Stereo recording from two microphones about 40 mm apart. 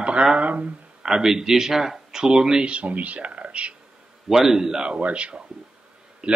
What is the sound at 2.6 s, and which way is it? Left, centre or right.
Speech, right.